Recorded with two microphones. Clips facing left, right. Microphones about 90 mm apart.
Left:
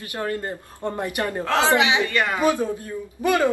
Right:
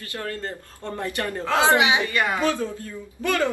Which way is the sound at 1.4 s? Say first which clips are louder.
Right 1 dB; 20° right (ahead or behind).